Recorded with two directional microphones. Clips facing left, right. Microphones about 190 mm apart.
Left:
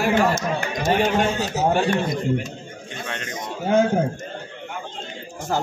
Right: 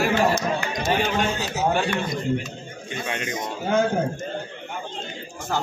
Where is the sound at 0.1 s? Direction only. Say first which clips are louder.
Left 1 dB; 50° left (ahead or behind).